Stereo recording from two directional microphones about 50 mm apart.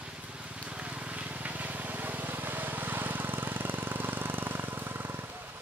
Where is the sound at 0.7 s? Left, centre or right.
Right.